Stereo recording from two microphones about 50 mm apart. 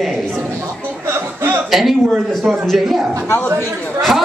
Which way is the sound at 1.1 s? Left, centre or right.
Right.